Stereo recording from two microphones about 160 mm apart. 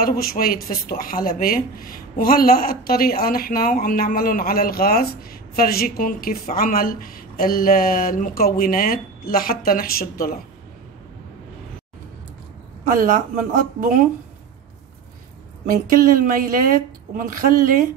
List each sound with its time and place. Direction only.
0.0 s a woman's voice: 70° left (ahead or behind)
12.8 s speech: 55° right (ahead or behind)
15.6 s speech: 60° right (ahead or behind)